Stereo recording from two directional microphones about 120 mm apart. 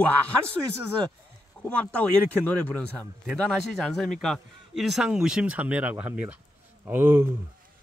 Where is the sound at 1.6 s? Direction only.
10° left (ahead or behind).